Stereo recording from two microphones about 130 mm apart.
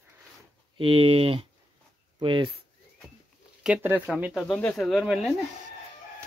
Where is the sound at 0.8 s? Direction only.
45° right (ahead or behind).